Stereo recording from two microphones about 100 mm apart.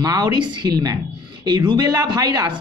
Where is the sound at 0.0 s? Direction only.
40° right (ahead or behind).